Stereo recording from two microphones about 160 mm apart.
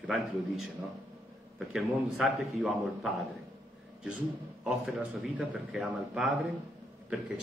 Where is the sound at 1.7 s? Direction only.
Centre (ahead or behind).